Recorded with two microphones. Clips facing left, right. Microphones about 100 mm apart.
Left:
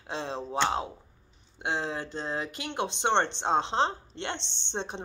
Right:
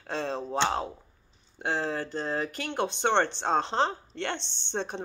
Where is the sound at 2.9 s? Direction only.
20° left (ahead or behind).